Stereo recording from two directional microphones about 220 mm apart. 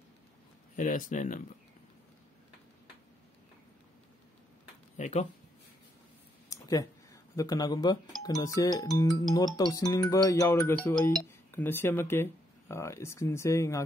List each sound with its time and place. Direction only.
0.7 s speech: 35° left (ahead or behind)
4.9 s speech: 30° left (ahead or behind)
6.5 s a sound: 15° left (ahead or behind)
8.2 s speech: 15° left (ahead or behind)